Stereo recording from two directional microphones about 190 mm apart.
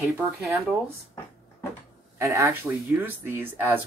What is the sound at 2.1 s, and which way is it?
Speech, 15° right (ahead or behind).